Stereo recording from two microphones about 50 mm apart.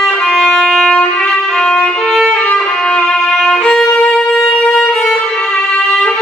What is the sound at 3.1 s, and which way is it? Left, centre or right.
Violin, centre.